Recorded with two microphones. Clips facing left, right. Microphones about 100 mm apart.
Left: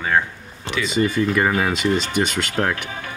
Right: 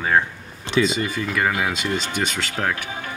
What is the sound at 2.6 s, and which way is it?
Speech, 5° right (ahead or behind).